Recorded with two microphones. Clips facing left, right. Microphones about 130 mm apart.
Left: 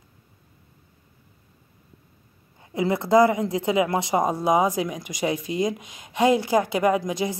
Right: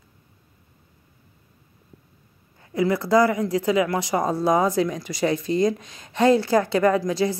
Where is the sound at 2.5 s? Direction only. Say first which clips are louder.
Right 2 dB; 20° left (ahead or behind).